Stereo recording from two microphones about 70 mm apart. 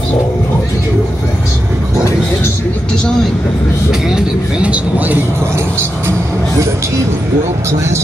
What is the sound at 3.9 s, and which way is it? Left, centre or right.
Speech, centre.